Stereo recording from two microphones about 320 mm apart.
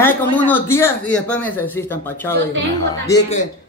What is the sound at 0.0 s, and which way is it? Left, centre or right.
Speech, centre.